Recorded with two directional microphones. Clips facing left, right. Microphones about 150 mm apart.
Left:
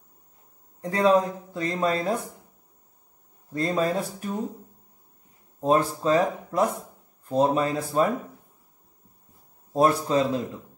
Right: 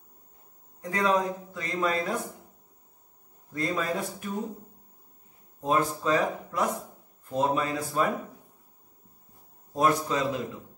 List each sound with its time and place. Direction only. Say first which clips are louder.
0.7 s a man's voice: left 5 dB; 30° left (ahead or behind)
3.5 s a man's voice: left 5 dB; 35° left (ahead or behind)
5.6 s a man's voice: left 4 dB; 35° left (ahead or behind)
9.8 s a man's voice: left 4 dB; 30° left (ahead or behind)